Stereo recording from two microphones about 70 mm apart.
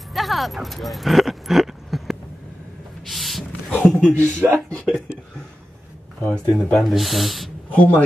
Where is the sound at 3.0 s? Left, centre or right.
Centre.